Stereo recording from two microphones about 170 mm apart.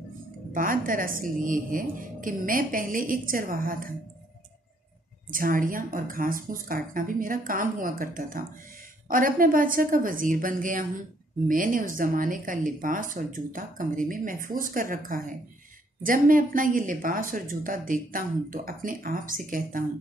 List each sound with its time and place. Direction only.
0.5 s a woman's voice: 55° right (ahead or behind)
5.3 s a woman's voice: 55° right (ahead or behind)